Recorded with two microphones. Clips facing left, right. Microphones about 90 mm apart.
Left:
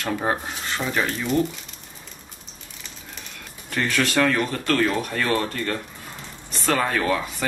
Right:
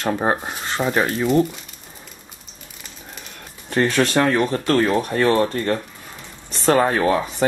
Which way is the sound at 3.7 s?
35° right (ahead or behind).